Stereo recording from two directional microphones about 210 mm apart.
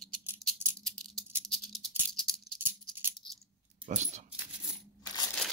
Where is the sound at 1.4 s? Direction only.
Centre (ahead or behind).